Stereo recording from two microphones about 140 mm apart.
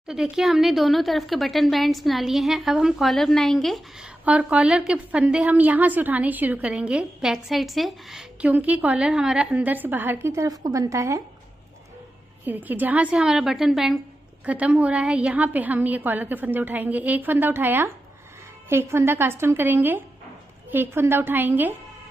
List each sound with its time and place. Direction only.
0.1 s speech: 5° right (ahead or behind)
4.2 s a woman's voice: 10° right (ahead or behind)
12.4 s a woman's voice: 10° right (ahead or behind)